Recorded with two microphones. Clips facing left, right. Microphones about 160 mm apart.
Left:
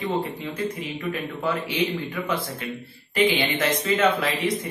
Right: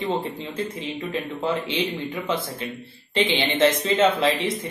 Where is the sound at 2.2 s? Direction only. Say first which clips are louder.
Right 1 dB; 20° right (ahead or behind).